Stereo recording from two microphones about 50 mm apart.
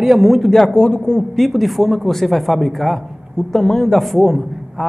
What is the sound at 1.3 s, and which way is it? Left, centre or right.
A man's voice, centre.